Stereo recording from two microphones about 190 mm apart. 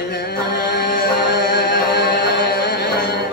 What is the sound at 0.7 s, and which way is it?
Chant, 60° left (ahead or behind).